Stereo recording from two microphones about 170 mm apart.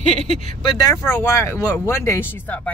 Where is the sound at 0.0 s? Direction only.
40° left (ahead or behind).